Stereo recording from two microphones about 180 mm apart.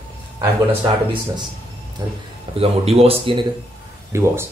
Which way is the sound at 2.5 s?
35° right (ahead or behind).